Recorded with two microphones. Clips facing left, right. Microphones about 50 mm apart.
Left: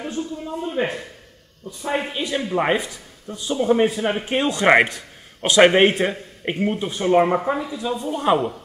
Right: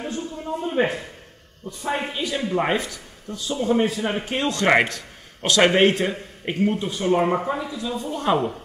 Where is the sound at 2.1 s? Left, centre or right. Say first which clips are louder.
Left 1 dB; left.